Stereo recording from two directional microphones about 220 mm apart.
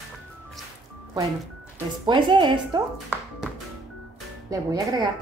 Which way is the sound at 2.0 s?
20° right (ahead or behind).